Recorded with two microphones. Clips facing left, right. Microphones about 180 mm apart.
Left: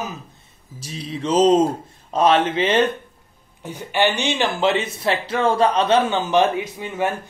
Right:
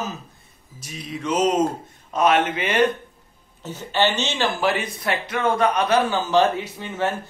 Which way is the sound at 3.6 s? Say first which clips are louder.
Left 1 dB; 15° left (ahead or behind).